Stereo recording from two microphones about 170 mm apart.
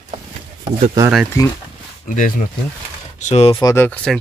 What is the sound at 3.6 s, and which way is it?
Speech, 20° left (ahead or behind).